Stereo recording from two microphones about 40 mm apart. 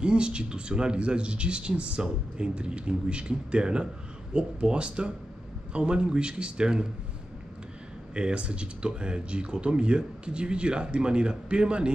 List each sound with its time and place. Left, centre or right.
0.0 s speech: right
8.1 s speech: right